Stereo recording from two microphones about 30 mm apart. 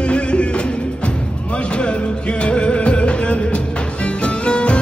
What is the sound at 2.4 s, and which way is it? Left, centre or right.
Music, left.